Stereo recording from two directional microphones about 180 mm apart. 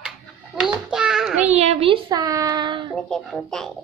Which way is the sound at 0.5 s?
5° right (ahead or behind).